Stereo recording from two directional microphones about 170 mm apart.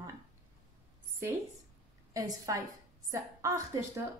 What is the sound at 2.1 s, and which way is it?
A woman's voice, 20° right (ahead or behind).